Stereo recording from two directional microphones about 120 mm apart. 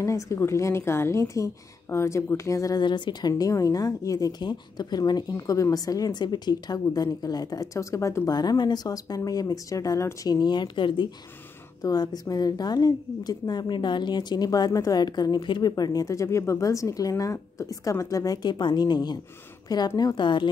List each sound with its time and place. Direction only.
0.0 s a woman's voice: 25° left (ahead or behind); by 20.4 s 40° left (ahead or behind)